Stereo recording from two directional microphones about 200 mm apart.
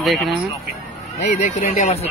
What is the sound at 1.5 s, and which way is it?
Speech, 35° left (ahead or behind).